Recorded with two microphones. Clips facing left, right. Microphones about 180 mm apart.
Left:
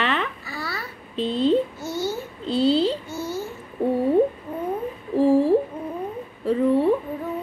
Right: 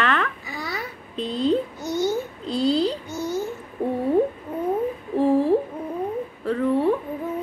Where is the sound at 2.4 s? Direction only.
30° left (ahead or behind).